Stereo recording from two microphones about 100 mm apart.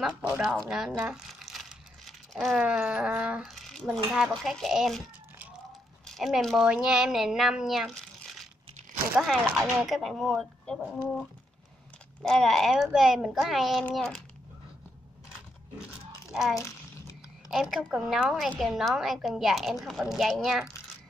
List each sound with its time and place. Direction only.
0.2 s speech: 5° right (ahead or behind)
3.5 s a woman's voice: centre (ahead or behind)
6.0 s a woman's voice: centre (ahead or behind)
16.3 s crumpling: 5° right (ahead or behind)
16.5 s a sound: 30° left (ahead or behind)
17.5 s a woman's voice: 5° right (ahead or behind)